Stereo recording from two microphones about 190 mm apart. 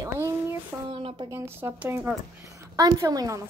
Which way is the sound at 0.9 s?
30° right (ahead or behind).